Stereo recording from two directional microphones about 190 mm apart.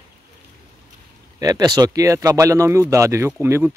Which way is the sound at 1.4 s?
20° right (ahead or behind).